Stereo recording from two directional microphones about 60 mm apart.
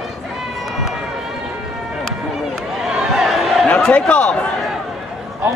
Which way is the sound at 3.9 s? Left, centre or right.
Left.